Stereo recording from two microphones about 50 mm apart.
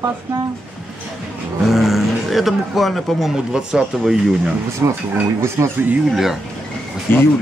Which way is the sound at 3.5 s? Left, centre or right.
Centre.